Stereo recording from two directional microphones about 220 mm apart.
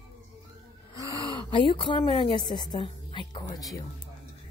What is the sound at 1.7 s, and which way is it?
Speech, 25° left (ahead or behind).